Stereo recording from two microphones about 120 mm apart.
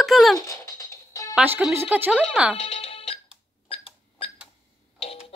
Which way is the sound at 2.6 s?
55° left (ahead or behind).